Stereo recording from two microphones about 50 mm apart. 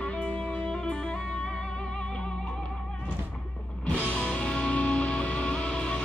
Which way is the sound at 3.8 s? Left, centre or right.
Left.